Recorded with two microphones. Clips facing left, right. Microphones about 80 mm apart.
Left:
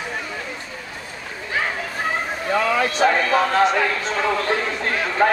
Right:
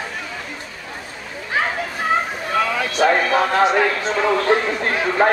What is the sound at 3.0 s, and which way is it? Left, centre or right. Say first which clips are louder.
A man's voice: right 3 dB; centre.